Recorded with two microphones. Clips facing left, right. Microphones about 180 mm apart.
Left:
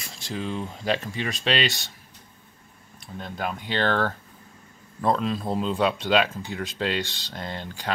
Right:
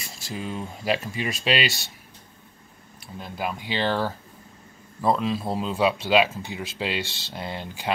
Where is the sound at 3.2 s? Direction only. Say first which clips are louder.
Even; 5° right (ahead or behind).